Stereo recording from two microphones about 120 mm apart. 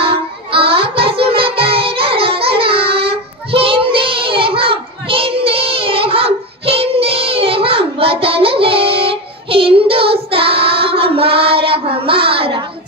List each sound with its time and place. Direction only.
0.0 s music: 50° right (ahead or behind)